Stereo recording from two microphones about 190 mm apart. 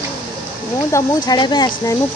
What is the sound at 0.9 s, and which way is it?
Speech, 20° left (ahead or behind).